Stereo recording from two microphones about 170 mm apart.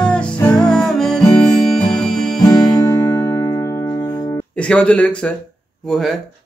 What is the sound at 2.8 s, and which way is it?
Music, 20° left (ahead or behind).